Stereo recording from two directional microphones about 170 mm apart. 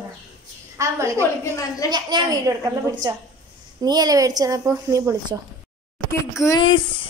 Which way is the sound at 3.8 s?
25° right (ahead or behind).